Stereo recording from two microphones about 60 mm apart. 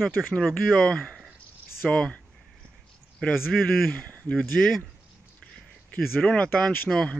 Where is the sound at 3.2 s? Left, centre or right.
Centre.